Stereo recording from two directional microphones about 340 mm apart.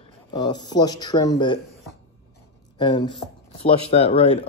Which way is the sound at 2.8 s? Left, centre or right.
Centre.